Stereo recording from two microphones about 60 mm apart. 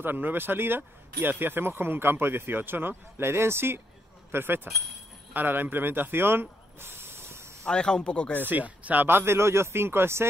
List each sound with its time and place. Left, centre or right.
0.0 s speech: right
7.6 s speech: centre
8.5 s speech: right
9.0 s a man's voice: right